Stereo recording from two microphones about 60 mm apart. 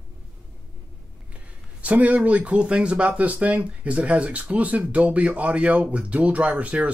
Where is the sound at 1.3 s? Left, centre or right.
Right.